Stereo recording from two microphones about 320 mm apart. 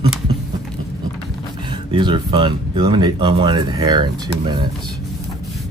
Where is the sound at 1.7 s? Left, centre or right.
Centre.